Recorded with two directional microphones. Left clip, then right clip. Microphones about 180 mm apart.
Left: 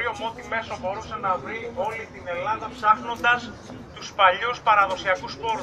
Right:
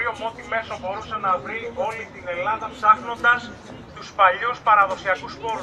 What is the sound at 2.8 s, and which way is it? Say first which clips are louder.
A man's voice: right 3 dB; 10° left (ahead or behind).